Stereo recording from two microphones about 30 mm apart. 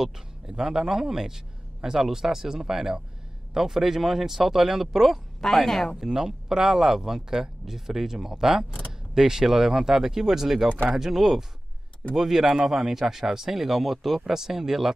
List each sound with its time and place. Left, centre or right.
0.0 s a man's voice: right
5.4 s speech: centre
5.9 s speech: centre